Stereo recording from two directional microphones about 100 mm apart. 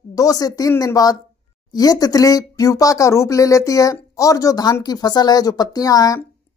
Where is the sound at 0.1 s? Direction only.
35° left (ahead or behind).